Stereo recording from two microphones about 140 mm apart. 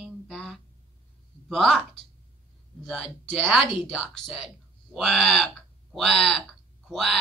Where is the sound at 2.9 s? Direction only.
Centre (ahead or behind).